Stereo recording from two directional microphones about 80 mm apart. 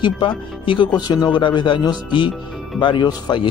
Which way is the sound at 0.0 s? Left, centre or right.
Left.